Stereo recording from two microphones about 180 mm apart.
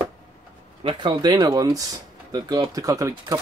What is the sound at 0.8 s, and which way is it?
Speech, 25° right (ahead or behind).